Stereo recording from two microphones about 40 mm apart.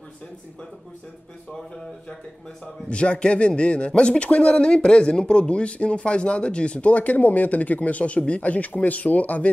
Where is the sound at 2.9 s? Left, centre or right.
Left.